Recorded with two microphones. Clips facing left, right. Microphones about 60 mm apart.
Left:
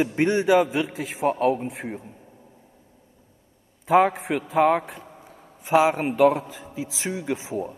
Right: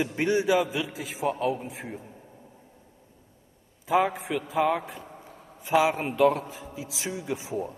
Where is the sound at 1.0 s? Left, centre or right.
Left.